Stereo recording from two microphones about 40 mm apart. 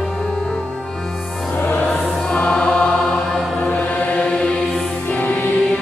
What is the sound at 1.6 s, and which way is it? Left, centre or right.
Music, left.